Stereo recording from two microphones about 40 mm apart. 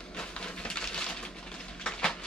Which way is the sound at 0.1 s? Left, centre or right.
Left.